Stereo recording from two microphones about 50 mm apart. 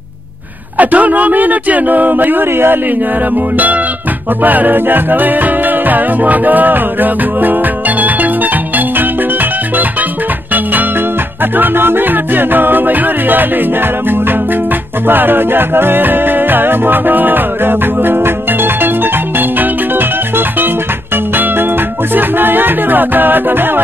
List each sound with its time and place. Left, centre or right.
0.7 s music: right
3.5 s music: right
11.5 s music: right
15.0 s music: right
22.1 s music: right